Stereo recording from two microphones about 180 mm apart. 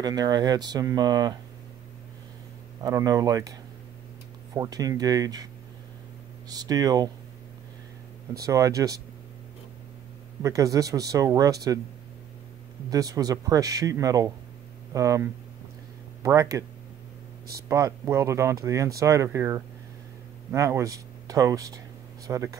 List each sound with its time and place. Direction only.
0.0 s speech: 20° right (ahead or behind)
2.8 s speech: 20° right (ahead or behind)
4.6 s speech: 20° right (ahead or behind)
6.5 s speech: 20° right (ahead or behind)
8.4 s speech: 20° right (ahead or behind)
10.4 s speech: 20° right (ahead or behind)
12.9 s speech: 20° right (ahead or behind)
17.6 s speech: 15° right (ahead or behind)